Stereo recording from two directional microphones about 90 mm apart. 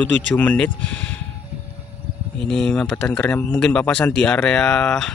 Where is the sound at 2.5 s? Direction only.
10° left (ahead or behind).